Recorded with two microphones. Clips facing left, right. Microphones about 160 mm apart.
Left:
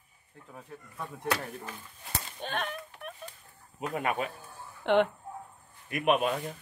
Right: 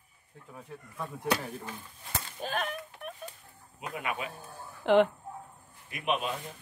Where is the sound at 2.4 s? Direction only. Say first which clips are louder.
Right 1 dB; 5° right (ahead or behind).